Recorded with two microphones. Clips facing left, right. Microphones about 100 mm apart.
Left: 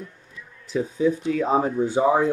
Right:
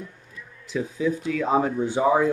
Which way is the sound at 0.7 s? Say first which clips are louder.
Left 3 dB; 35° left (ahead or behind).